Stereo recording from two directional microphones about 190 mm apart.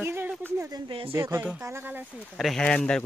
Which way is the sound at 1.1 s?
15° right (ahead or behind).